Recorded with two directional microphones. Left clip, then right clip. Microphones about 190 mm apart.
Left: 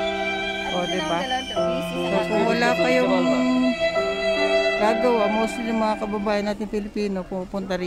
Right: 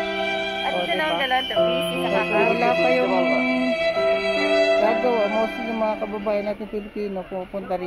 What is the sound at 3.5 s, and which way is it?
Music, centre (ahead or behind).